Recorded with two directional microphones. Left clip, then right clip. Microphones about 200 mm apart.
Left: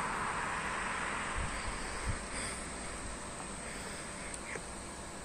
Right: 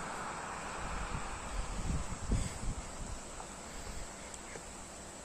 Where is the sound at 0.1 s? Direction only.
50° right (ahead or behind).